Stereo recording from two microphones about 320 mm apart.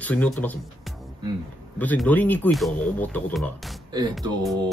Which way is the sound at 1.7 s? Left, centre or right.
Centre.